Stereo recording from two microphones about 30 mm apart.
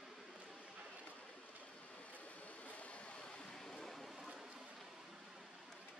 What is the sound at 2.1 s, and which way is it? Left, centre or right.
Vehicle, left.